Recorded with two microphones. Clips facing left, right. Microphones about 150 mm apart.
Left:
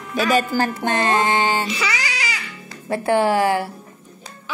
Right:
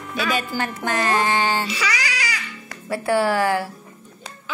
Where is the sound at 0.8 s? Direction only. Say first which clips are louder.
Right 1 dB; 25° left (ahead or behind).